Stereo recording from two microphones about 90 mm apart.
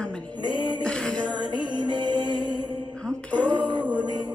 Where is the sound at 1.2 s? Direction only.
55° right (ahead or behind).